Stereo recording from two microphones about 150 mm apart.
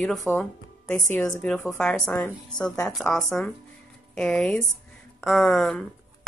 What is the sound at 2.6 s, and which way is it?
Speech, 25° left (ahead or behind).